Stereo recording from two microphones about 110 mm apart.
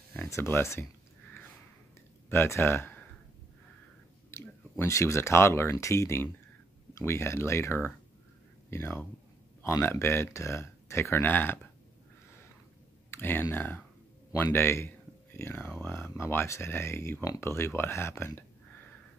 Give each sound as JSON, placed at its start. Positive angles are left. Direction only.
{"t": 0.3, "sound": "speech", "side_deg": 25}
{"t": 2.2, "sound": "speech", "side_deg": 20}
{"t": 4.3, "sound": "speech", "side_deg": 25}
{"t": 13.1, "sound": "speech", "side_deg": 20}